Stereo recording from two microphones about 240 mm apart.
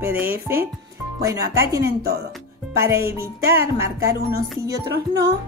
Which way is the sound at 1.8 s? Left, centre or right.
Right.